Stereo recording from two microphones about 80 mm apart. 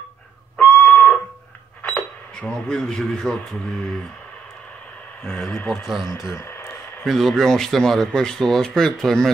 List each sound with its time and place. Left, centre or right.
0.6 s music: centre
1.8 s cash register: centre
2.5 s speech: centre
5.2 s speech: centre
6.3 s radio: left
7.1 s speech: centre